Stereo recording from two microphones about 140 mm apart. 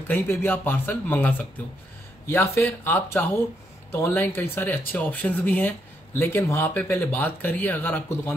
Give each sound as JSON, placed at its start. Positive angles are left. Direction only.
{"t": 0.1, "sound": "speech", "side_deg": 15}